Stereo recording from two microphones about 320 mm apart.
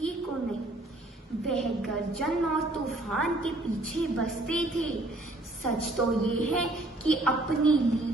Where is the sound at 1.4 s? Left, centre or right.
Centre.